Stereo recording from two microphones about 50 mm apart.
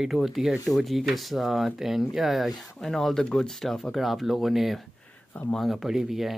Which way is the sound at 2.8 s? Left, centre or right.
Centre.